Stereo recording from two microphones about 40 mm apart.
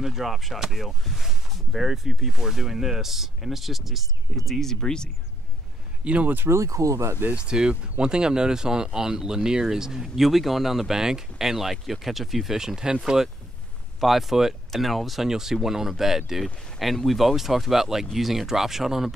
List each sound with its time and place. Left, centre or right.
0.0 s speech: centre
4.6 s speech: centre
6.0 s speech: right
7.3 s speech: right
13.9 s speech: centre
15.2 s speech: centre
16.9 s speech: centre